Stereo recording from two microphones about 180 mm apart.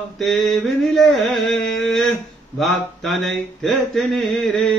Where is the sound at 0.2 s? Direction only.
Centre (ahead or behind).